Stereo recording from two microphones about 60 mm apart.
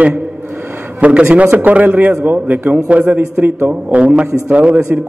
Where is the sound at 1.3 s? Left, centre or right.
Right.